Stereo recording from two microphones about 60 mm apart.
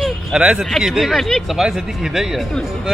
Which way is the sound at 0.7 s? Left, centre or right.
Centre.